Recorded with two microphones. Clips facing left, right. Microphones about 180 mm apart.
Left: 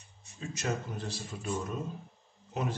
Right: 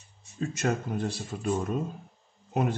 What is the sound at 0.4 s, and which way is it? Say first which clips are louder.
A man's voice: right 6 dB; 55° right (ahead or behind).